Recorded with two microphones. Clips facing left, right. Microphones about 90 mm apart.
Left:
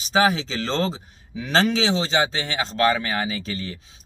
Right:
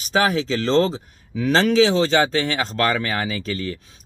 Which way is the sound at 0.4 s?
45° right (ahead or behind).